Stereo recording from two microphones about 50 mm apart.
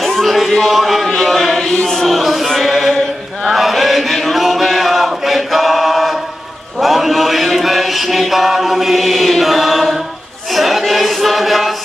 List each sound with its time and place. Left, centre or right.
0.0 s music: centre
1.1 s chant: centre
1.9 s a sound: centre
2.5 s chant: centre
6.8 s mantra: centre
10.5 s a sound: centre